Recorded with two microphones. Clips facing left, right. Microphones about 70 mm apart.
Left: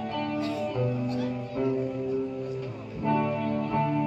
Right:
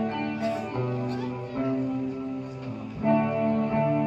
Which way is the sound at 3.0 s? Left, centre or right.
Right.